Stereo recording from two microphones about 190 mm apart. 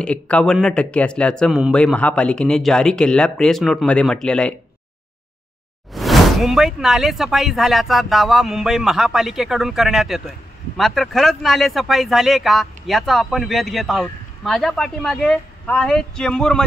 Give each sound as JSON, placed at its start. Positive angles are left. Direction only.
{"t": 0.0, "sound": "speech", "side_deg": 5}
{"t": 5.9, "sound": "speech", "side_deg": 0}